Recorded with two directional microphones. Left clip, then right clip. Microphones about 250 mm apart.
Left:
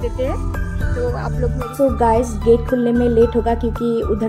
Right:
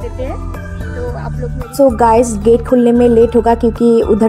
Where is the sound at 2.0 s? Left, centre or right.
Right.